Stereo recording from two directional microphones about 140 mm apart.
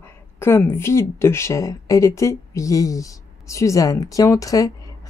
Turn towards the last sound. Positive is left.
turn(degrees=25)  # may be behind; listen again after turning